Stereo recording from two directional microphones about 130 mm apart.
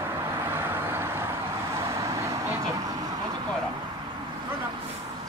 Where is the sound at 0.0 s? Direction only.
20° right (ahead or behind).